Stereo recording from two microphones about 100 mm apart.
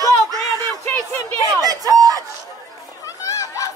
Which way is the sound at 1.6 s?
40° right (ahead or behind).